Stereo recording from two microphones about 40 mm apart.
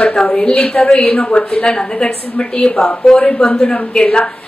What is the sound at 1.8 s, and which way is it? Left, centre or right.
A man's voice, centre.